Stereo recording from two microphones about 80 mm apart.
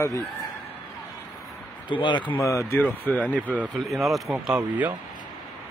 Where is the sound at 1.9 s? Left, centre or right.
Left.